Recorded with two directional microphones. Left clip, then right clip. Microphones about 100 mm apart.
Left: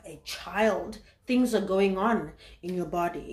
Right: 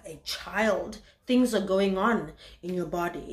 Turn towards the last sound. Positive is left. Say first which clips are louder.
# left 1 dB
turn(degrees=-30)  # may be behind; listen again after turning